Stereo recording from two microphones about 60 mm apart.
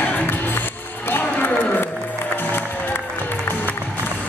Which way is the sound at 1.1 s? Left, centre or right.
Left.